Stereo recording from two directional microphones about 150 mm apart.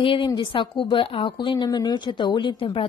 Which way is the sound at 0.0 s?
35° left (ahead or behind).